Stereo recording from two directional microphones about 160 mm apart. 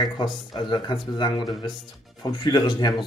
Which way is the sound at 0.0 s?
30° left (ahead or behind).